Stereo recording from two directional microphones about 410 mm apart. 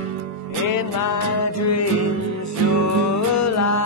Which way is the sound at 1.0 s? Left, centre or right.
Left.